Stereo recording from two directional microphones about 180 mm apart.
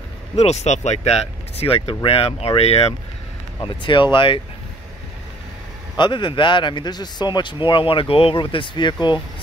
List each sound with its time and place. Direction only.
0.4 s a man's voice: 35° left (ahead or behind)
5.9 s a man's voice: 25° left (ahead or behind)